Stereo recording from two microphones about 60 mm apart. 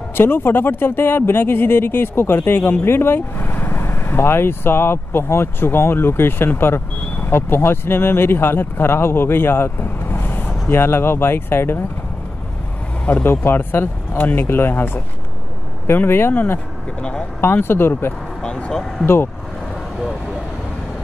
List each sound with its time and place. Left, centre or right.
0.2 s speech: left
13.0 s speech: left
18.4 s speech: centre